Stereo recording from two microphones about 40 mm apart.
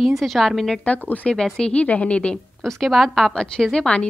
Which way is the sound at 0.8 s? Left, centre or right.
Left.